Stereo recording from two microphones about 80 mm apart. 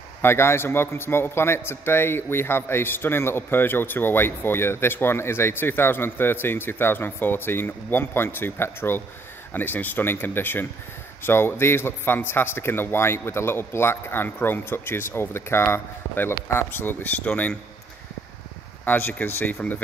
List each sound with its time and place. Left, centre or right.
0.2 s a man's voice: left; by 17.6 s centre
18.9 s a man's voice: left